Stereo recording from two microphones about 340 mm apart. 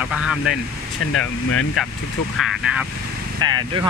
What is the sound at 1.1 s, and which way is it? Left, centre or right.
Speech, left.